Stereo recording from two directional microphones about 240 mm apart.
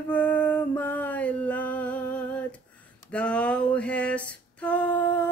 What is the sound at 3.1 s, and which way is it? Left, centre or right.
Female singing, centre.